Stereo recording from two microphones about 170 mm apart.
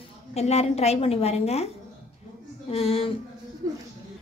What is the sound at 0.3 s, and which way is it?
A woman's voice, 40° left (ahead or behind).